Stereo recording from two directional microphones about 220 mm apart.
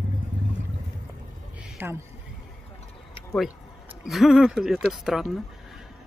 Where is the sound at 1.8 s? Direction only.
10° right (ahead or behind).